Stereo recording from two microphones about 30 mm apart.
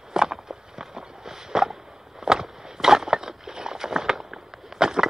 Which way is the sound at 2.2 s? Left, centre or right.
Centre.